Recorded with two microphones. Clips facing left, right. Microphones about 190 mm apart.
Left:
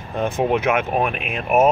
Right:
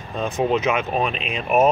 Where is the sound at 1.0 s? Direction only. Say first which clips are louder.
Left 1 dB; 55° left (ahead or behind).